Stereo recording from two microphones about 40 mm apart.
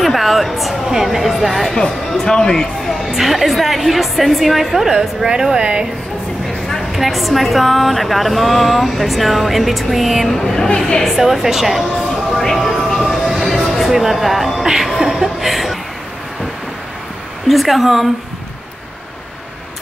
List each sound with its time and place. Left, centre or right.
0.0 s speech: centre
1.8 s speech: centre
3.1 s speech: centre
5.0 s a woman's voice: centre
6.9 s speech: centre
11.1 s a woman's voice: centre
12.3 s speech: centre
13.0 s music: centre
14.7 s a woman's voice: centre
15.1 s chuckle: centre
17.5 s speech: centre